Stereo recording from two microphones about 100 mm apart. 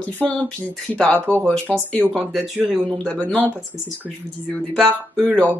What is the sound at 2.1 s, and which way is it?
Speech, centre (ahead or behind).